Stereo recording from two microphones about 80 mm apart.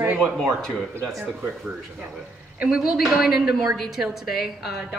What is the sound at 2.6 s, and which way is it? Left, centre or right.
A woman's voice, centre.